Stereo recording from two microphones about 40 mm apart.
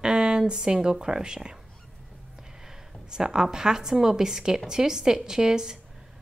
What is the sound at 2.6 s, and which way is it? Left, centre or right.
A woman's voice, centre.